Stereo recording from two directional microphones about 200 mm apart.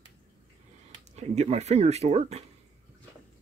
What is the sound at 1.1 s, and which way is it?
Speech, 35° right (ahead or behind).